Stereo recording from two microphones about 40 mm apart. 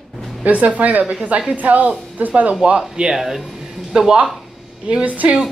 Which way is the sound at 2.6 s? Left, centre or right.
Right.